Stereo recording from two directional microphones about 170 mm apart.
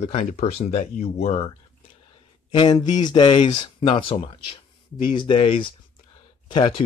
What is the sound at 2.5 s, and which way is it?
Speech, 25° left (ahead or behind).